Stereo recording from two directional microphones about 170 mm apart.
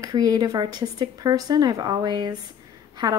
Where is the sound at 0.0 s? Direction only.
20° right (ahead or behind).